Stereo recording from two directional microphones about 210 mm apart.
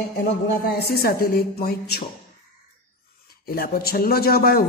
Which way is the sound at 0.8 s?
50° left (ahead or behind).